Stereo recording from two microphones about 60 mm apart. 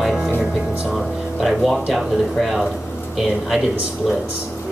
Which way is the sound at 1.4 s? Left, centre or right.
Centre.